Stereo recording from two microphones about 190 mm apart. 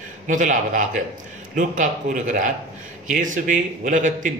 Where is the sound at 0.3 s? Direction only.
40° right (ahead or behind).